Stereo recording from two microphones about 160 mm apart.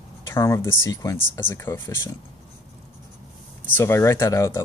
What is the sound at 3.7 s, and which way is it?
Speech, 15° left (ahead or behind).